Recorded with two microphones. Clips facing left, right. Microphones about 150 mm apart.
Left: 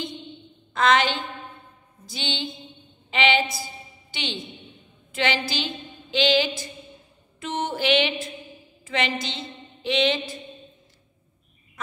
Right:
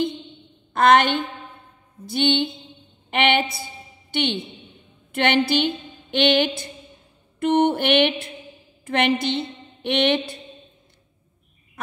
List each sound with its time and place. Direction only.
0.7 s music: 55° right (ahead or behind)
3.1 s a woman's voice: 60° right (ahead or behind)
7.3 s music: 60° right (ahead or behind)
8.8 s a woman's voice: 60° right (ahead or behind)